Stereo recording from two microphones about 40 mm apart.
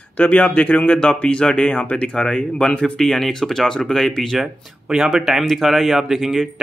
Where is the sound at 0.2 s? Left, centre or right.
Left.